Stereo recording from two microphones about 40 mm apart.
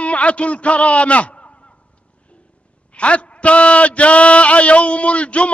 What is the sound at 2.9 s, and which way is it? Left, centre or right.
A man's voice, left.